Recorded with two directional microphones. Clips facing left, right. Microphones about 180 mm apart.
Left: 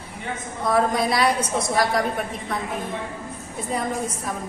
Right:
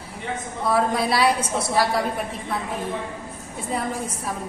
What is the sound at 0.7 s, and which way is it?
A woman's voice, 5° right (ahead or behind).